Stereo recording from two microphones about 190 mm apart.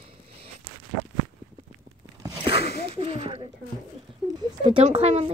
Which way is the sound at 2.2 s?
30° right (ahead or behind).